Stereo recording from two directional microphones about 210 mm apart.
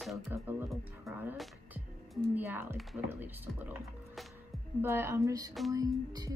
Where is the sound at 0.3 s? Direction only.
10° right (ahead or behind).